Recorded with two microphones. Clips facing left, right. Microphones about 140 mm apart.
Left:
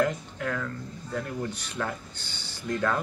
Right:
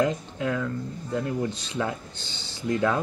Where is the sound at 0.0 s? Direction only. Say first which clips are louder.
Right 2 dB; 20° right (ahead or behind).